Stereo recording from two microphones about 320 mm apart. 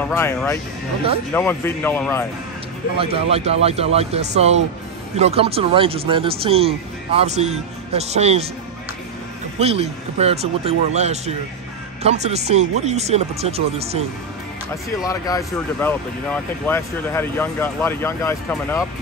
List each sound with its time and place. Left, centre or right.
0.0 s speech: centre
3.0 s speech: centre
9.6 s speech: centre
15.0 s speech: centre